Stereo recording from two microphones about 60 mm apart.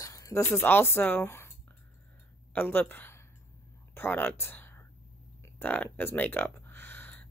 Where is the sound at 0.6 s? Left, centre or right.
Left.